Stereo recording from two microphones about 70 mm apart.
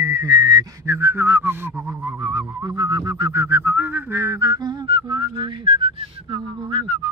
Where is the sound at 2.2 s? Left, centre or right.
Right.